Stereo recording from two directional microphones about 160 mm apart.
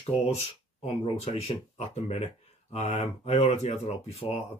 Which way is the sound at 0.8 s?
40° left (ahead or behind).